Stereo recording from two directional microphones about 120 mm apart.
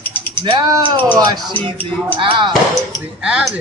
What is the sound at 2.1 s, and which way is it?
Speech, 45° right (ahead or behind).